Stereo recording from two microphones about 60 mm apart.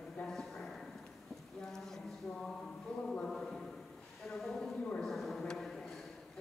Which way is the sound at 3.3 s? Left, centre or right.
Centre.